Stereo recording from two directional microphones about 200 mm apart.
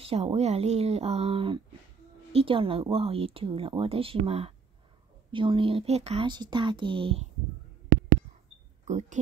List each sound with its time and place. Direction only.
0.0 s a woman's voice: 30° right (ahead or behind)
8.8 s speech: 35° right (ahead or behind)